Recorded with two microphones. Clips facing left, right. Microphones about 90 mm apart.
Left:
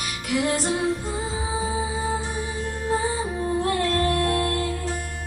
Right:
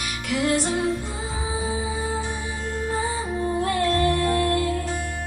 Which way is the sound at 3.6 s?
45° left (ahead or behind).